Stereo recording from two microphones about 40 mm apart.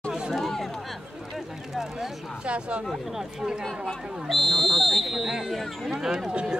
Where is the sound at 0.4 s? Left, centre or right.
Centre.